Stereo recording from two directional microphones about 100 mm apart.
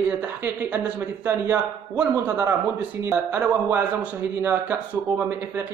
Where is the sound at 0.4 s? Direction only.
20° right (ahead or behind).